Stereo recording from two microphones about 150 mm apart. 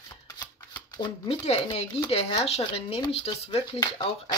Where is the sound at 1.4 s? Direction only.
40° left (ahead or behind).